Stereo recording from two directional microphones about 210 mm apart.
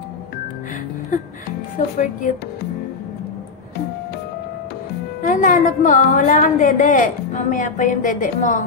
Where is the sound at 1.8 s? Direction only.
35° left (ahead or behind).